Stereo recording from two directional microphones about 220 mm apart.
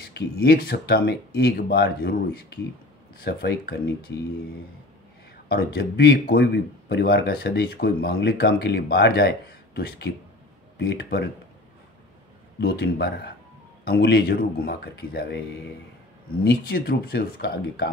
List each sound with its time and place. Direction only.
0.0 s speech: 45° left (ahead or behind)
5.5 s speech: 45° left (ahead or behind)
12.5 s speech: 45° left (ahead or behind)
16.4 s speech: 45° left (ahead or behind)